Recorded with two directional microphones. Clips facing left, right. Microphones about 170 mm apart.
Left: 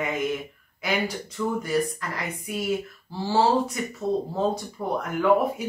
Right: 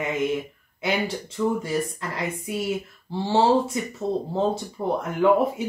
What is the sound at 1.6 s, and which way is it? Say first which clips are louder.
Speech: left 1 dB; 25° right (ahead or behind).